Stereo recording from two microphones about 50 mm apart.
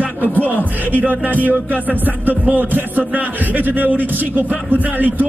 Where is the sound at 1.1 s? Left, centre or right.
Right.